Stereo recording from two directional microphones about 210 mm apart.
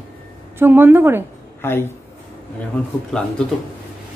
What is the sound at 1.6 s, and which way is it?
Speech, 10° left (ahead or behind).